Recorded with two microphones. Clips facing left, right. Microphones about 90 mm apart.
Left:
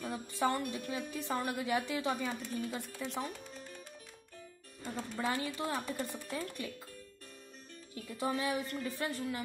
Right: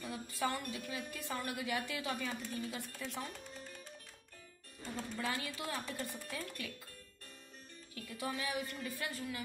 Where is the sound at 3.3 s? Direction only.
5° left (ahead or behind).